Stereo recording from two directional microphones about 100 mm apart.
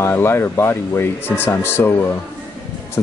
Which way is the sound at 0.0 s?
25° left (ahead or behind).